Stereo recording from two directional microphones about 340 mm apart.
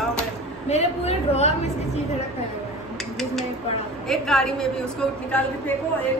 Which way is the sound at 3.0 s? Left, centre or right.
Centre.